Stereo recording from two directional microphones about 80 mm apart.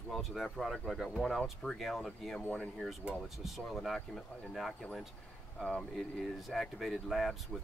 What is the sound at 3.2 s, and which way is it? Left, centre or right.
A man's voice, centre.